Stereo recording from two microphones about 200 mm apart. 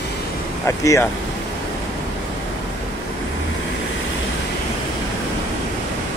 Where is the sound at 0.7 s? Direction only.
15° left (ahead or behind).